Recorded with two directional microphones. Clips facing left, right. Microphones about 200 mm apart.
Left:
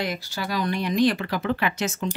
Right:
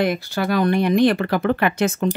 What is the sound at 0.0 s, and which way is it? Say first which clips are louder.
Speech: right 8 dB; 55° right (ahead or behind).